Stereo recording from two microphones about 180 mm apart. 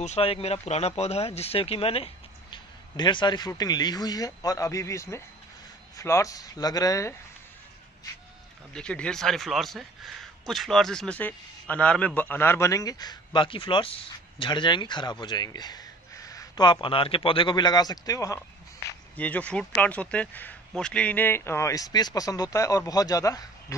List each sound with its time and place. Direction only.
0.0 s a man's voice: 35° left (ahead or behind); by 7.2 s 20° left (ahead or behind)
8.7 s a man's voice: 5° left (ahead or behind)